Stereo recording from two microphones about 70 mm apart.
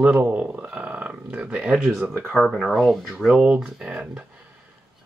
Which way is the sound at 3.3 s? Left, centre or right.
Centre.